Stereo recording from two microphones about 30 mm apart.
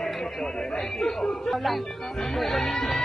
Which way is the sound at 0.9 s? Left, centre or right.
Centre.